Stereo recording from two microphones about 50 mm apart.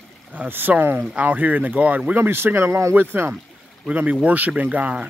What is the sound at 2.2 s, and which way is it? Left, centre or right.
Speech, right.